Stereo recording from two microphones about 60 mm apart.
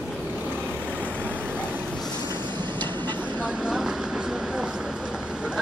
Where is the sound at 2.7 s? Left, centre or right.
Left.